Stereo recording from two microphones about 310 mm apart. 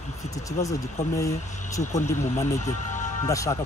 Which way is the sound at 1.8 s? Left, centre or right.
Left.